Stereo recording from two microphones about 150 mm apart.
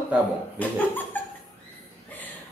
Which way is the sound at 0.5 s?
10° left (ahead or behind).